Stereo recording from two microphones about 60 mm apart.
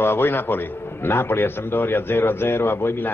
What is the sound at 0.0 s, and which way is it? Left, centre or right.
A man's voice, left.